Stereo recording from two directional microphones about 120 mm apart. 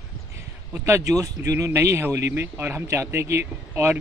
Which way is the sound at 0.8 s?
25° right (ahead or behind).